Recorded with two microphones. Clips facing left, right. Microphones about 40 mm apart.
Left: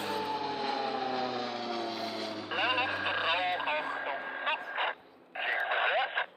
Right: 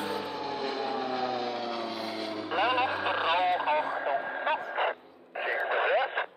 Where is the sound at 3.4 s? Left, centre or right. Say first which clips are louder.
Right 5 dB; centre.